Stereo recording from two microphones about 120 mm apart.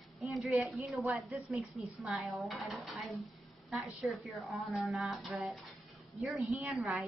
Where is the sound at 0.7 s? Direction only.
Centre (ahead or behind).